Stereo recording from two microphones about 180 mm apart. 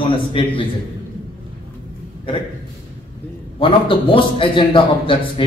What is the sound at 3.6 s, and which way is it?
A man's voice, 30° left (ahead or behind).